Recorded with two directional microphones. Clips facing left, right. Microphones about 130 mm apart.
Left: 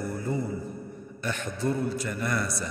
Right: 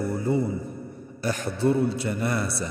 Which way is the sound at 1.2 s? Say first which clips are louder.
Right 6 dB; 35° right (ahead or behind).